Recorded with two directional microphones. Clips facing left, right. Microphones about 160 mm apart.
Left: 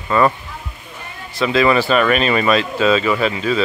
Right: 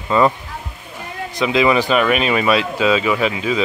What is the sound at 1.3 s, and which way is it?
Speech, 15° right (ahead or behind).